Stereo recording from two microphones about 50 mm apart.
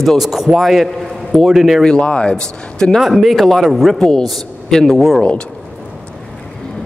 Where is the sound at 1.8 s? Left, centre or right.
Centre.